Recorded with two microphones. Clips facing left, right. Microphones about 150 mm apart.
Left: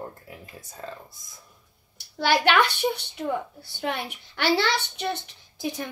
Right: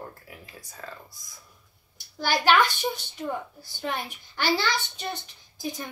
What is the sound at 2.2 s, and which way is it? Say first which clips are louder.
A woman's voice: left 1 dB; 70° left (ahead or behind).